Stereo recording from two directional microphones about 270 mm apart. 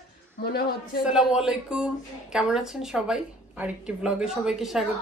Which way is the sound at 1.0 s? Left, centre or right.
Centre.